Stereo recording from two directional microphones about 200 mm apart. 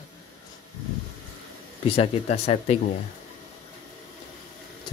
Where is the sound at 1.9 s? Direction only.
30° left (ahead or behind).